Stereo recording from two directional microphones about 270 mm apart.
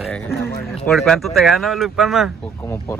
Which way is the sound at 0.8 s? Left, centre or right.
Centre.